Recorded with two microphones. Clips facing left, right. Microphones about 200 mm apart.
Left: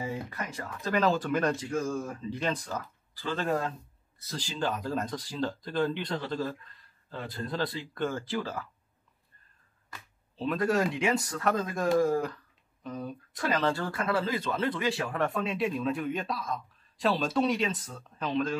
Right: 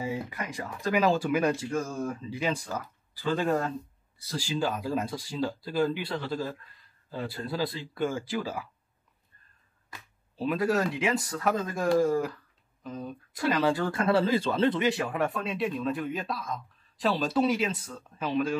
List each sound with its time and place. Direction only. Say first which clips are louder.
0.1 s speech: right 2 dB; 10° right (ahead or behind)
4.3 s speech: right 3 dB; 10° right (ahead or behind)
10.3 s speech: right 1 dB; 5° right (ahead or behind)
13.6 s speech: right 4 dB; 15° right (ahead or behind)
14.0 s speech: right 6 dB; 30° right (ahead or behind)
15.1 s speech: even; centre (ahead or behind)